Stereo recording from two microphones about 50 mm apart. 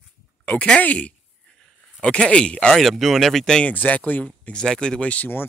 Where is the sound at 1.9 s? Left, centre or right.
Centre.